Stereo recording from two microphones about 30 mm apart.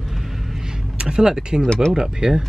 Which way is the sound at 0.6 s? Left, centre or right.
Right.